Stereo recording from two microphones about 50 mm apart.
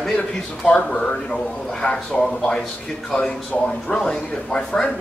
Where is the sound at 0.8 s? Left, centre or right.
Centre.